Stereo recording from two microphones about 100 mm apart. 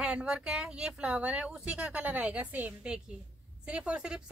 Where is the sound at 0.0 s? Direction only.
10° right (ahead or behind).